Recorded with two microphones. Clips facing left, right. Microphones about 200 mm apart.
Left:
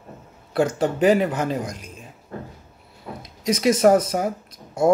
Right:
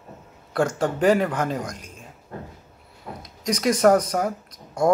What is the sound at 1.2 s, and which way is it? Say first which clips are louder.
Speech: left 1 dB; 25° left (ahead or behind).